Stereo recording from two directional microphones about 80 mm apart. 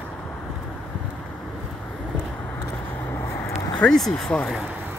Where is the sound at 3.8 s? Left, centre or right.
Centre.